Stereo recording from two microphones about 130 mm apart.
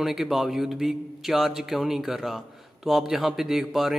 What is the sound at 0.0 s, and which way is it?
Speech, centre (ahead or behind).